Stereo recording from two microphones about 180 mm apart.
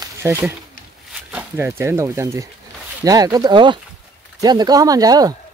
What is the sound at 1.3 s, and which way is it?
Speech, 10° right (ahead or behind).